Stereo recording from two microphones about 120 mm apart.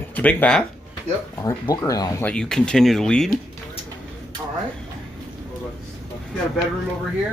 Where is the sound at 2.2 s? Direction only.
5° left (ahead or behind).